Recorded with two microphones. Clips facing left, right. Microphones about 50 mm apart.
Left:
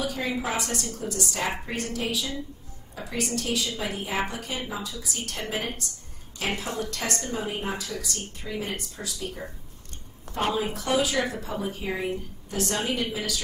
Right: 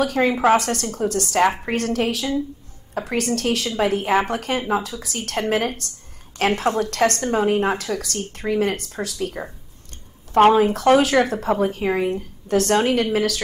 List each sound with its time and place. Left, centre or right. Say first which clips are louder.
0.0 s a woman's voice: right 11 dB; right